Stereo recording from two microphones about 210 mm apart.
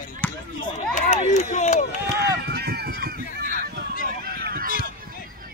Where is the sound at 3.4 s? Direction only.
40° left (ahead or behind).